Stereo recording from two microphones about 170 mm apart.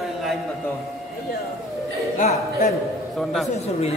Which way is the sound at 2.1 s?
45° left (ahead or behind).